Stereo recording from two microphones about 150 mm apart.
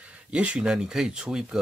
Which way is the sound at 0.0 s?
10° right (ahead or behind).